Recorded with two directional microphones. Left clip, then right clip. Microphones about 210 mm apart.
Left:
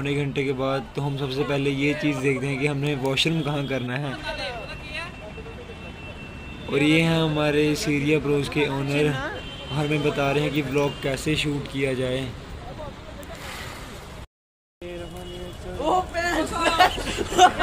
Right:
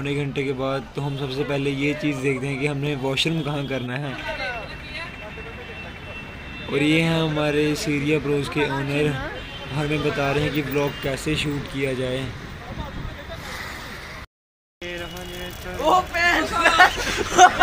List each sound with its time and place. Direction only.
0.0 s a man's voice: centre (ahead or behind)
6.7 s a man's voice: centre (ahead or behind)
15.8 s hubbub: 15° right (ahead or behind)